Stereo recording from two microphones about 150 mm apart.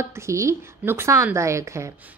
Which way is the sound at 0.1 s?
20° right (ahead or behind).